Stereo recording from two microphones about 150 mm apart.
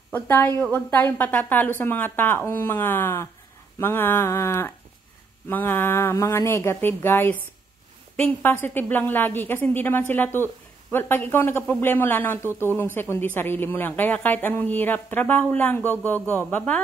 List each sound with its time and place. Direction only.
0.1 s a woman's voice: 15° left (ahead or behind)